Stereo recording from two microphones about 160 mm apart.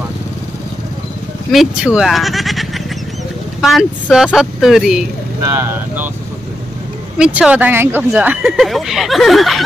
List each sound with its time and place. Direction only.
1.5 s speech: 5° right (ahead or behind)
5.4 s speech: 15° right (ahead or behind)
7.2 s speech: 5° right (ahead or behind)